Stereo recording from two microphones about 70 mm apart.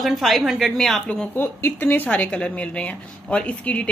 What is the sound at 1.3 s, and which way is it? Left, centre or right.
Speech, left.